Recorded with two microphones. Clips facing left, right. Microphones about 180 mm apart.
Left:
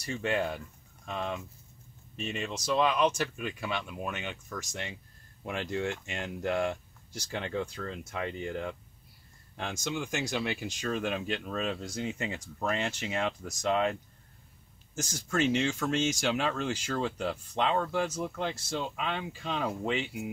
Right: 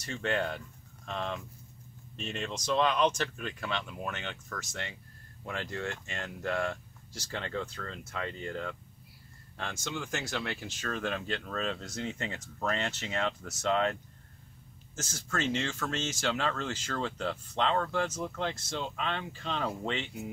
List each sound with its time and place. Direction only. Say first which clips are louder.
0.0 s speech: left 1 dB; 10° left (ahead or behind)
15.0 s speech: left 5 dB; 15° left (ahead or behind)